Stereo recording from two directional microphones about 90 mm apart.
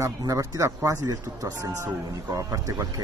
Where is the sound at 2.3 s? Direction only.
40° right (ahead or behind).